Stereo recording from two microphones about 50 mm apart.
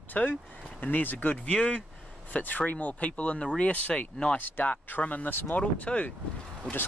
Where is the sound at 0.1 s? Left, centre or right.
Left; by 4.1 s centre.